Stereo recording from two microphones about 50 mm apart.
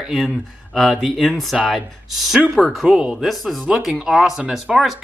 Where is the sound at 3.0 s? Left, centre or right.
Centre.